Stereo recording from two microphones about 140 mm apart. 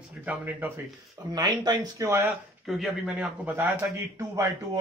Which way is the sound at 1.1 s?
30° right (ahead or behind).